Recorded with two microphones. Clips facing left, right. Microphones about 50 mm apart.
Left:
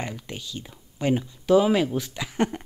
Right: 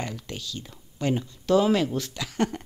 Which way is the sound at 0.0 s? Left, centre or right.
Centre.